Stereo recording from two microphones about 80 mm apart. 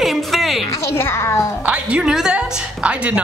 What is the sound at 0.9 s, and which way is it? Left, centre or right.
Speech, left.